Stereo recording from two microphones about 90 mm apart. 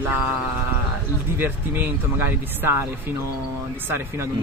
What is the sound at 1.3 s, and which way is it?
Speech, 25° right (ahead or behind).